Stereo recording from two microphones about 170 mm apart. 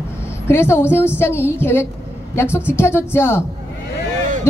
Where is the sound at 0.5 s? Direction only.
15° left (ahead or behind).